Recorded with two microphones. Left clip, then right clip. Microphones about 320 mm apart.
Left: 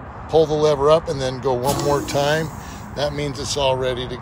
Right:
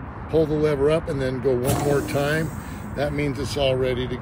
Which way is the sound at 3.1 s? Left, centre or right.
Left.